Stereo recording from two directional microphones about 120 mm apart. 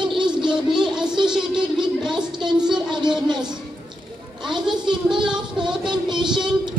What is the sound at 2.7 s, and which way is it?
Child singing, 40° right (ahead or behind).